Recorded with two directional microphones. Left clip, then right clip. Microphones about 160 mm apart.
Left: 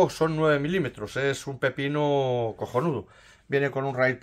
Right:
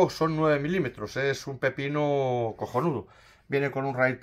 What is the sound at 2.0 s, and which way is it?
Speech, 20° left (ahead or behind).